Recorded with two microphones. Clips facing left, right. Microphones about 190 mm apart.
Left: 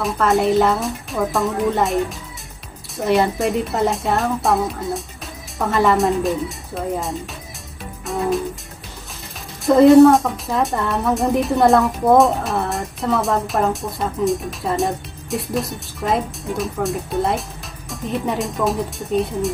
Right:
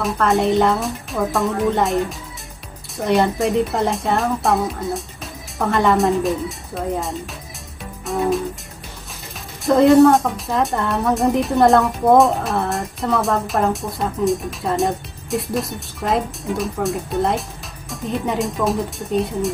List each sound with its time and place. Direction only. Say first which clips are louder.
0.0 s a woman's voice: even; centre (ahead or behind)
8.1 s music: right 2 dB; centre (ahead or behind)
9.7 s a woman's voice: left 2 dB; centre (ahead or behind)